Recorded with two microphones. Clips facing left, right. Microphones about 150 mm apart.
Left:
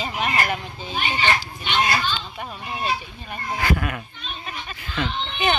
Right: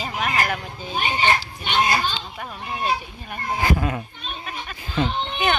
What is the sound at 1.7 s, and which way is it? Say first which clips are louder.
Speech: right 1 dB; 45° right (ahead or behind).